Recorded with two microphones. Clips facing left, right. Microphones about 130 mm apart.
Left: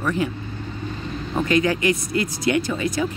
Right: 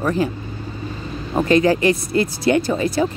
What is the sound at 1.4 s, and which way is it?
Speech, 35° right (ahead or behind).